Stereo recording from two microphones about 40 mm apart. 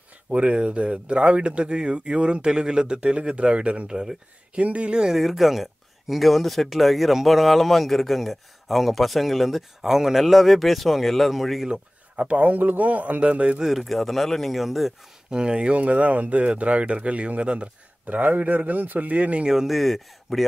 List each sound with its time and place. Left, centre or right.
0.3 s speech: right
5.1 s speech: centre
11.7 s speech: right
13.6 s speech: centre
15.3 s speech: right
15.7 s speech: right
18.0 s a man's voice: right
19.4 s speech: centre
19.8 s speech: centre